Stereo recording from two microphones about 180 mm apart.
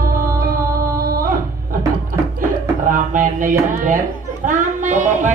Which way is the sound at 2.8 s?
50° right (ahead or behind).